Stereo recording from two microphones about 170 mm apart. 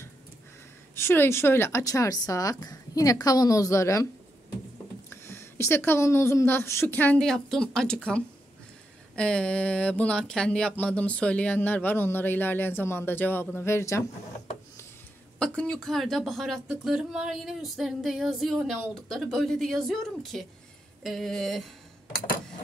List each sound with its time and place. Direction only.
0.9 s speech: 15° left (ahead or behind)
5.1 s speech: 15° left (ahead or behind)
15.3 s a woman's voice: 5° left (ahead or behind)